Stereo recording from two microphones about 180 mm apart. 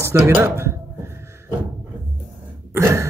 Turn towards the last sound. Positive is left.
turn(degrees=-15)  # may be behind; listen again after turning